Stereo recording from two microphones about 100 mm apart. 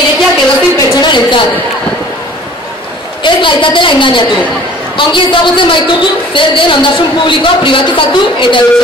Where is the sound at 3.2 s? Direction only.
55° left (ahead or behind).